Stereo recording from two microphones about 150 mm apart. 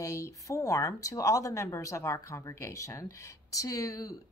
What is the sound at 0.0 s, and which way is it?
Speech, 20° left (ahead or behind).